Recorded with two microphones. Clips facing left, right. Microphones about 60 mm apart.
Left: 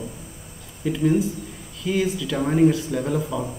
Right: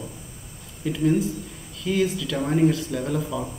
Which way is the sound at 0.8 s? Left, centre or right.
Centre.